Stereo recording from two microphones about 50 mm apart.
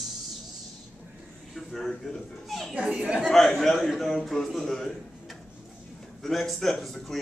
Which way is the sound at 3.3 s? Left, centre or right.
Centre.